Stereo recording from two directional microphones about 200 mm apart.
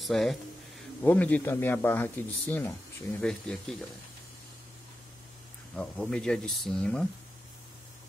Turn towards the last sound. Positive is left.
turn(degrees=5)  # may be behind; listen again after turning